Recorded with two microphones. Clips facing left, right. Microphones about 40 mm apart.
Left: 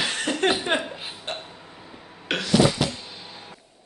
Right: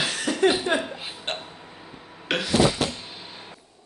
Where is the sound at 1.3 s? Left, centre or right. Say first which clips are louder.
Right 2 dB; right.